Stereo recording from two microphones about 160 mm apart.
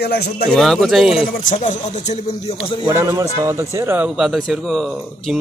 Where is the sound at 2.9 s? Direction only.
20° right (ahead or behind).